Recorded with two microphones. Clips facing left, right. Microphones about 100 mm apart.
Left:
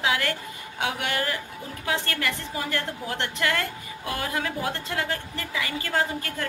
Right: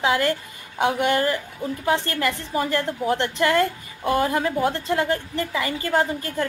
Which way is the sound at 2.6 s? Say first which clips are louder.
Right 10 dB; 30° right (ahead or behind).